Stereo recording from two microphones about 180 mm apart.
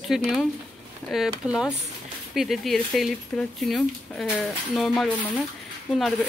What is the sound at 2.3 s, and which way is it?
Speech, centre (ahead or behind).